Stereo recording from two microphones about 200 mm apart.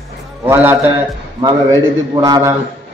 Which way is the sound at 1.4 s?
20° right (ahead or behind).